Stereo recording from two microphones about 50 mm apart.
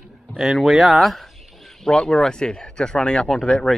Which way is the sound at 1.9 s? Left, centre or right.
Centre.